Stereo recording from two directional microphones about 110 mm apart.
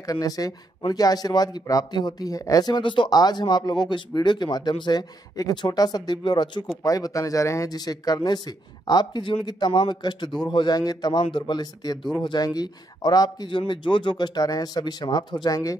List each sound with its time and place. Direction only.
0.0 s speech: 35° left (ahead or behind)
6.8 s speech: 30° left (ahead or behind)